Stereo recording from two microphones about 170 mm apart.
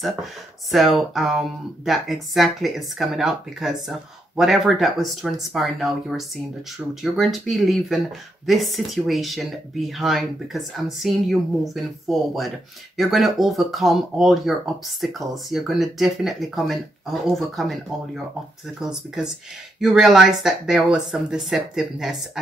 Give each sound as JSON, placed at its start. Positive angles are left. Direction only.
{"t": 0.0, "sound": "speech", "side_deg": 0}